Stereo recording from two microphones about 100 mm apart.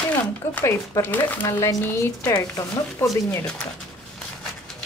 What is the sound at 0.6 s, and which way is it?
Speech, 30° left (ahead or behind).